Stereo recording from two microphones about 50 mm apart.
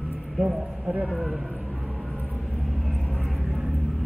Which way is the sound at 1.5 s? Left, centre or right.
Right.